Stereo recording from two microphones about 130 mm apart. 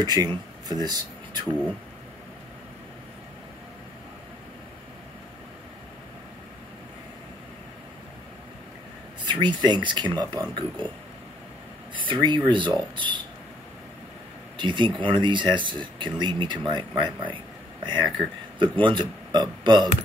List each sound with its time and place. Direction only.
0.0 s speech: 30° right (ahead or behind)
9.2 s a sound: 35° right (ahead or behind)
9.6 s speech: 35° right (ahead or behind)
11.9 s speech: 40° right (ahead or behind)
14.6 s speech: 40° right (ahead or behind)